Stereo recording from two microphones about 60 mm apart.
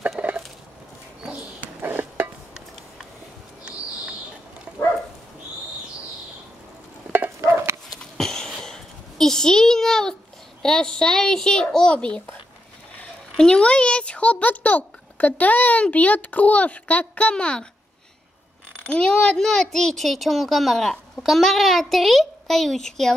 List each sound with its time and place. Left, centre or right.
0.2 s a sound: right
7.1 s stir: right
8.0 s a sound: centre
10.6 s a child's voice: centre
13.4 s a child's voice: centre
18.9 s a child's voice: centre